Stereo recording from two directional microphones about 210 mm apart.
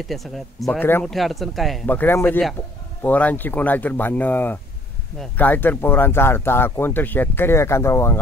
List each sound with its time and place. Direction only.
0.0 s speech: centre (ahead or behind)